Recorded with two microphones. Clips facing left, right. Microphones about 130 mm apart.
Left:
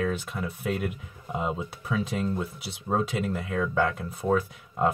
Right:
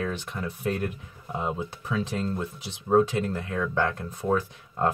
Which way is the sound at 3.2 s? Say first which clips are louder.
Even; 15° left (ahead or behind).